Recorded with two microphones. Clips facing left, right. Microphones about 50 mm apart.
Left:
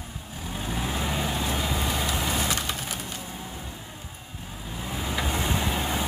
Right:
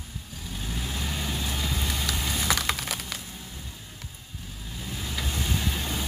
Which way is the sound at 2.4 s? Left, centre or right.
Right.